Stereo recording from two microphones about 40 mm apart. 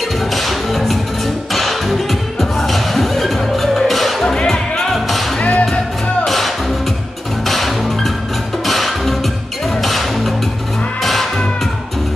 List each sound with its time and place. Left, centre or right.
0.3 s music: centre
4.9 s music: centre
5.4 s music: left
6.2 s music: centre